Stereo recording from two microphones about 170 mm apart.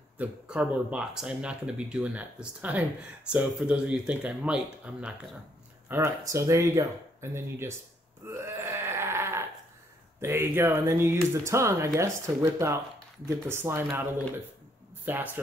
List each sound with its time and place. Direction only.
0.2 s speech: 5° right (ahead or behind)
8.3 s a sound: 15° right (ahead or behind)
10.2 s speech: 15° right (ahead or behind)